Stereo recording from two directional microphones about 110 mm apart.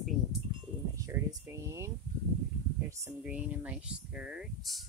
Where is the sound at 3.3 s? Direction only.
15° right (ahead or behind).